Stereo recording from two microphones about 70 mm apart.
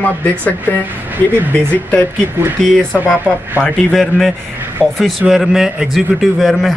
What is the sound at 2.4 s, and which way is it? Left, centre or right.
Speech, right.